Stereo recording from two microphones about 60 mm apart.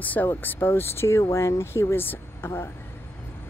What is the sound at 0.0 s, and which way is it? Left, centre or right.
Speech, left.